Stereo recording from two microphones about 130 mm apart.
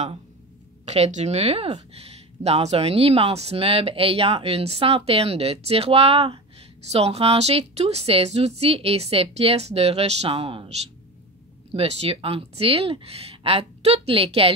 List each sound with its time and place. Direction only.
0.8 s speech: 55° right (ahead or behind)
11.7 s speech: 50° right (ahead or behind)